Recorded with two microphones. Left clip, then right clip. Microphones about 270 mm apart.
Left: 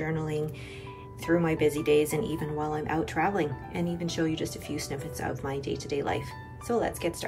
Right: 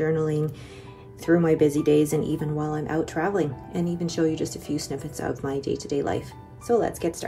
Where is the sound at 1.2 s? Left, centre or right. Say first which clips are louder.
Right 5 dB; left.